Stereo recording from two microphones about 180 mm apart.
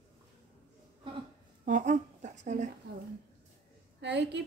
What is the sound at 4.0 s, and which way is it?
Speech, 75° right (ahead or behind).